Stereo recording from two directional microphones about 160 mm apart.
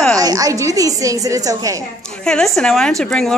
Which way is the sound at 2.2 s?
5° left (ahead or behind).